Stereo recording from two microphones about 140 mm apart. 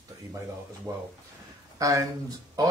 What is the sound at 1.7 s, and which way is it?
Speech, 25° right (ahead or behind).